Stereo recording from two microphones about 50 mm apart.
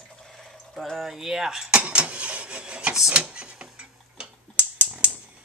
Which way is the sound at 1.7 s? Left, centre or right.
Right.